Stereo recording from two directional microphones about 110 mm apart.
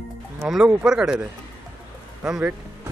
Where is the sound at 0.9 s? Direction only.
10° right (ahead or behind).